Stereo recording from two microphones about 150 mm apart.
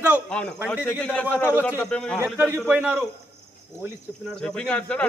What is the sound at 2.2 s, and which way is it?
Speech, 15° right (ahead or behind).